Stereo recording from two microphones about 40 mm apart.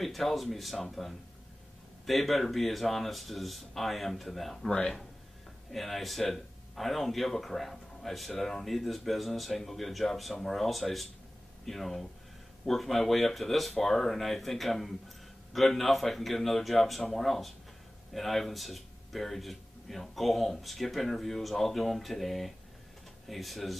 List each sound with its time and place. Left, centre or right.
0.0 s speech: centre
2.0 s speech: centre
5.7 s speech: centre